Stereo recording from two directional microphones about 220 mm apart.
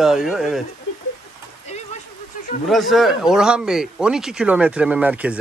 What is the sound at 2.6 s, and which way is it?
A man's voice, centre (ahead or behind).